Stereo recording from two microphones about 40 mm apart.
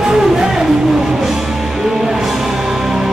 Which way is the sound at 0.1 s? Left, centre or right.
Centre.